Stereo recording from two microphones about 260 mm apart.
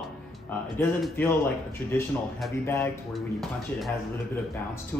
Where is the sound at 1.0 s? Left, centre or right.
Centre.